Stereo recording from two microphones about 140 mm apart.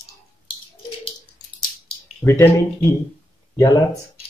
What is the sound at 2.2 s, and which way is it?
Speech, 20° left (ahead or behind).